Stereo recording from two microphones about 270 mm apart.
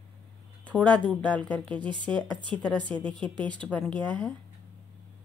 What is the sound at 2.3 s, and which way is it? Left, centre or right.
Speech, centre.